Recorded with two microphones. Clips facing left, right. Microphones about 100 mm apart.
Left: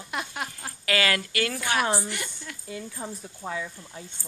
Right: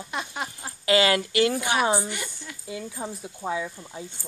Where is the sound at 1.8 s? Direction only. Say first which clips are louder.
Right 3 dB; centre (ahead or behind).